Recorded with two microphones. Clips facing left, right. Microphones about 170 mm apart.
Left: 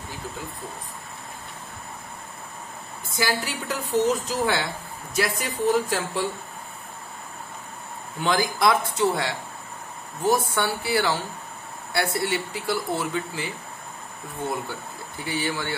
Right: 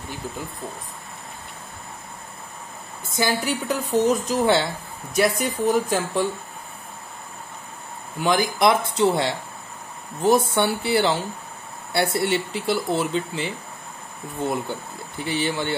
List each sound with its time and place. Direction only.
3.2 s speech: 20° right (ahead or behind)
8.2 s speech: 20° right (ahead or behind)
15.2 s speech: 25° right (ahead or behind)